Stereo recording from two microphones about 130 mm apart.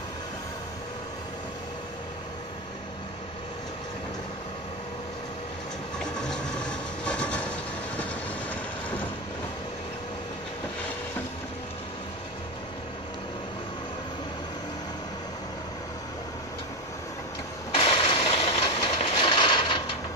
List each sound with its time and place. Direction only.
5.9 s train: 5° left (ahead or behind)
17.7 s a sound: 45° left (ahead or behind)
18.7 s train: 40° left (ahead or behind)